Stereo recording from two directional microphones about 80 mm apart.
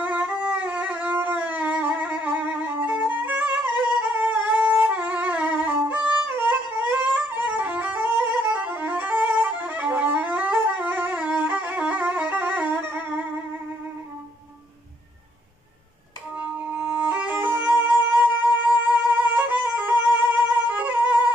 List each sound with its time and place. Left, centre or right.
0.0 s music: right
8.5 s violin: centre
16.3 s music: right
19.1 s music: right